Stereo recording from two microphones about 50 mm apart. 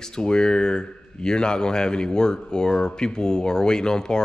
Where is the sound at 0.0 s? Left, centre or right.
Centre.